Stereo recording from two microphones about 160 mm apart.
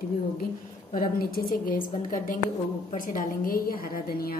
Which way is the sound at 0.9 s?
65° left (ahead or behind).